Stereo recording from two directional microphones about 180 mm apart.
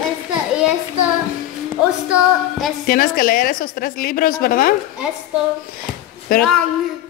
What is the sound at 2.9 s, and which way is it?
A woman's voice, 55° left (ahead or behind).